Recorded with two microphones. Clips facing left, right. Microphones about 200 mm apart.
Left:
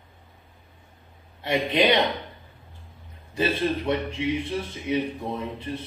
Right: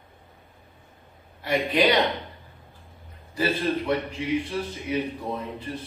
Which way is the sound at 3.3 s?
25° left (ahead or behind).